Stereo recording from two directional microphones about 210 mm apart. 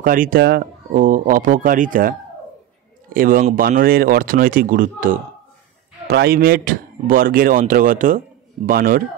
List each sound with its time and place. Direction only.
0.0 s a man's voice: 40° right (ahead or behind)